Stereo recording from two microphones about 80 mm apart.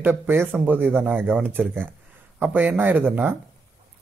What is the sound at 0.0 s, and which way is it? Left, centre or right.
Speech, right.